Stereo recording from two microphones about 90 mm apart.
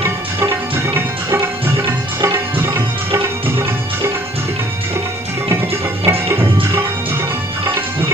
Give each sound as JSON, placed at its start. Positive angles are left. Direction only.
{"t": 0.9, "sound": "sitar", "side_deg": -30}
{"t": 1.9, "sound": "tabla", "side_deg": -30}
{"t": 6.0, "sound": "music", "side_deg": -25}